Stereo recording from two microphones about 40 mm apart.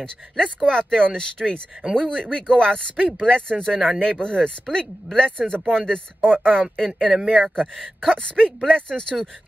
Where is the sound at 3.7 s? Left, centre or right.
Centre.